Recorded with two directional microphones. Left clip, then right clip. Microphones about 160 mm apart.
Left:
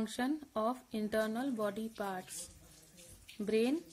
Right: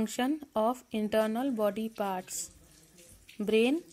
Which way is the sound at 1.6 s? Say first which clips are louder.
Right 7 dB; 40° right (ahead or behind).